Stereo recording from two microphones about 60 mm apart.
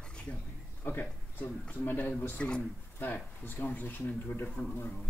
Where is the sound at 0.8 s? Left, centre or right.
Left.